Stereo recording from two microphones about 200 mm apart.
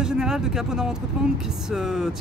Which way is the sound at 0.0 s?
5° right (ahead or behind).